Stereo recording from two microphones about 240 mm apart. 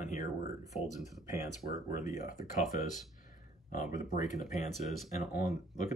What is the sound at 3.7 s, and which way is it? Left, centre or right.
Speech, left.